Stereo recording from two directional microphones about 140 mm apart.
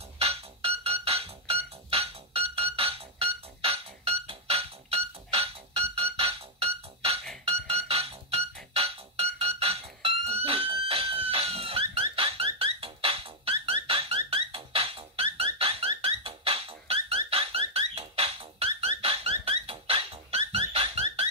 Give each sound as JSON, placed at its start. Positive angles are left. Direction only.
{"t": 0.2, "sound": "music", "side_deg": -45}